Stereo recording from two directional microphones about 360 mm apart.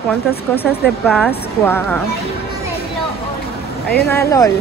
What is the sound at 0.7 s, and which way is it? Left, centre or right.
A woman's voice, centre.